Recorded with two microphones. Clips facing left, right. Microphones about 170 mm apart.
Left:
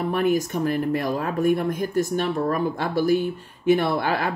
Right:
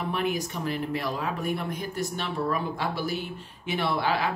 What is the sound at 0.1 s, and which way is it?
Speech, 45° left (ahead or behind).